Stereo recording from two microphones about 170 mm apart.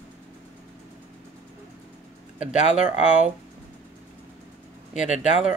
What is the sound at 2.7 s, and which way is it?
Speech, 5° right (ahead or behind).